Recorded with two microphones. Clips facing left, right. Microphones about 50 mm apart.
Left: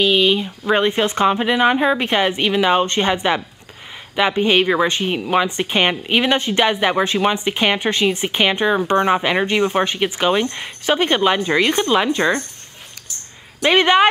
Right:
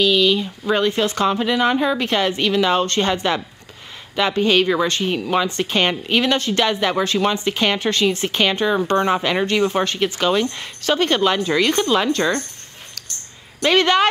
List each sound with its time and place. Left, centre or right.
0.0 s speech: left
13.6 s speech: centre